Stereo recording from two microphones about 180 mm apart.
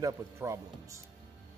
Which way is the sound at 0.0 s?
15° right (ahead or behind).